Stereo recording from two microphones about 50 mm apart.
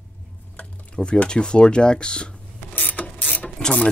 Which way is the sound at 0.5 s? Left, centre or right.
Centre.